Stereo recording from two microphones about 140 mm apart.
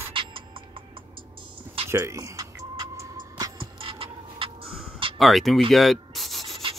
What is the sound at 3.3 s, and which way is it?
Music, 35° right (ahead or behind).